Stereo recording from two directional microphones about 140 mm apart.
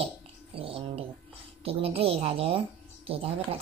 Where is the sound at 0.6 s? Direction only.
40° right (ahead or behind).